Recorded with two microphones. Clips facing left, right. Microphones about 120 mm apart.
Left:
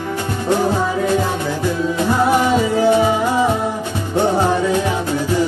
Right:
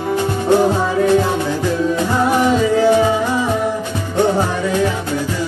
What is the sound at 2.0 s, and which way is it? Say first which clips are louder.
Music: left 2 dB; 15° left (ahead or behind).